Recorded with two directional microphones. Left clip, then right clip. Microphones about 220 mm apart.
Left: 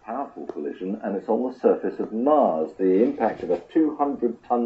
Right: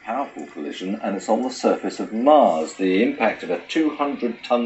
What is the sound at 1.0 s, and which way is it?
Speech, 15° right (ahead or behind).